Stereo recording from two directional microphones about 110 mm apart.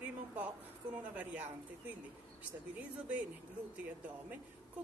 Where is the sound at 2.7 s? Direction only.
15° right (ahead or behind).